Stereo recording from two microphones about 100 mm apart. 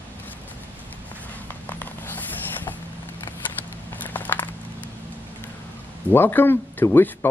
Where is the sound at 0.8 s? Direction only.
15° left (ahead or behind).